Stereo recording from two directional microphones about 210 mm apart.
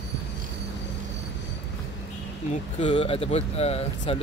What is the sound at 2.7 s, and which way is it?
Speech, 30° left (ahead or behind).